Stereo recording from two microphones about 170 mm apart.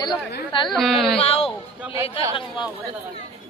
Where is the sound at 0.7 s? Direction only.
Centre (ahead or behind).